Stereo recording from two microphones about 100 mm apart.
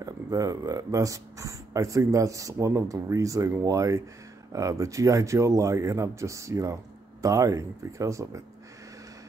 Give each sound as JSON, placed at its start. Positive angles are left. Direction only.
{"t": 0.0, "sound": "speech", "side_deg": -35}